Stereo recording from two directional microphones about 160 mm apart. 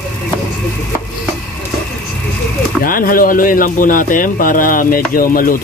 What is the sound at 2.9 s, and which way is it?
Speech, 60° left (ahead or behind).